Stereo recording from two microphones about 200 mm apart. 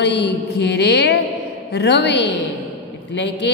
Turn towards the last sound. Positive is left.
turn(degrees=60)  # may be behind; listen again after turning